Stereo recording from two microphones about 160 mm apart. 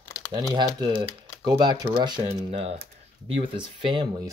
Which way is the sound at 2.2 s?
40° right (ahead or behind).